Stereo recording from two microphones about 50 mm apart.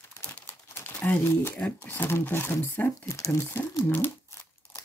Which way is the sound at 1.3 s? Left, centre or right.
Left.